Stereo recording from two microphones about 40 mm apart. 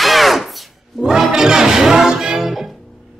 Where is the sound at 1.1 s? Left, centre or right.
Centre.